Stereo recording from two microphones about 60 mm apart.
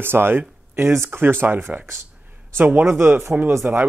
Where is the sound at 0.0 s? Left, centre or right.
Right.